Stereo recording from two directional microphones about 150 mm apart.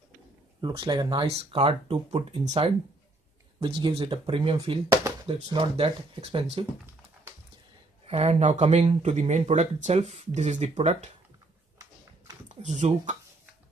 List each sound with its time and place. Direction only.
0.6 s speech: 30° right (ahead or behind)
3.5 s speech: 35° right (ahead or behind)
8.1 s speech: 45° right (ahead or behind)
11.8 s a sound: 25° right (ahead or behind)
12.6 s speech: 50° right (ahead or behind)